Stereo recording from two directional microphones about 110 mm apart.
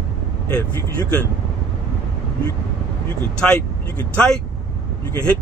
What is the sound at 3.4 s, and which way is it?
Speech, 10° left (ahead or behind).